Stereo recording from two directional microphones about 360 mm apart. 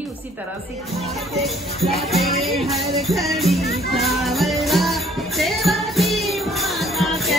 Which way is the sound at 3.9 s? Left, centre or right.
Centre.